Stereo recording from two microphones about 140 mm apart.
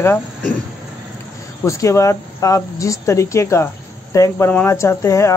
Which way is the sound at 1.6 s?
20° left (ahead or behind).